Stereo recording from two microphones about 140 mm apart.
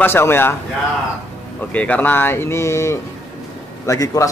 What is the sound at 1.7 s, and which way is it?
A man's voice, 10° left (ahead or behind).